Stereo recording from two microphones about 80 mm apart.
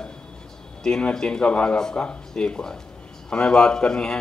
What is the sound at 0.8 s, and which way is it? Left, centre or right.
Speech, centre.